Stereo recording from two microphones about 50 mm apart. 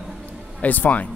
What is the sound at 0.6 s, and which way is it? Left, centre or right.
Speech, left.